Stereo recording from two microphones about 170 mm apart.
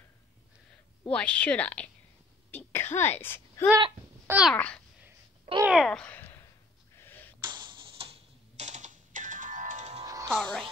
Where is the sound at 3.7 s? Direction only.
25° right (ahead or behind).